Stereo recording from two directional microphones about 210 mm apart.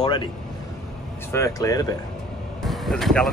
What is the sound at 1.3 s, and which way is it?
Speech, 15° left (ahead or behind).